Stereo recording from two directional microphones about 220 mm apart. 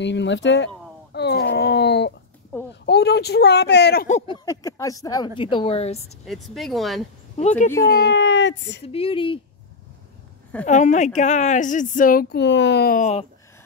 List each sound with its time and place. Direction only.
0.0 s speech: 55° left (ahead or behind)
1.1 s a sound: 50° left (ahead or behind)
2.8 s speech: 50° left (ahead or behind)
4.3 s a woman's voice: 15° left (ahead or behind)
6.2 s speech: centre (ahead or behind)
7.3 s speech: 30° left (ahead or behind)
7.7 s speech: 15° left (ahead or behind)
8.0 s speech: 55° left (ahead or behind)
8.8 s a woman's voice: 25° left (ahead or behind)
10.6 s speech: 35° left (ahead or behind)